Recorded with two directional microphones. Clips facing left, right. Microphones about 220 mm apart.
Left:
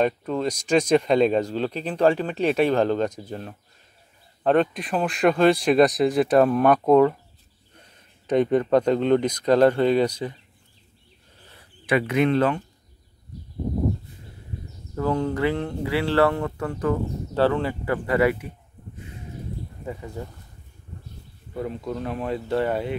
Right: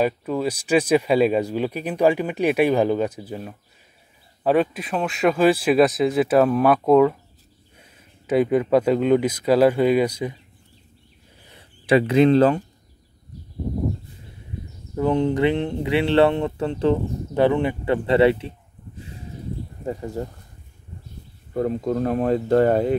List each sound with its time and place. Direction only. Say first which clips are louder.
0.0 s speech: right 1 dB; 5° right (ahead or behind)
11.8 s speech: right 5 dB; 30° right (ahead or behind)
15.0 s speech: right 4 dB; 20° right (ahead or behind)
19.8 s speech: right 7 dB; 40° right (ahead or behind)
21.5 s speech: right 7 dB; 45° right (ahead or behind)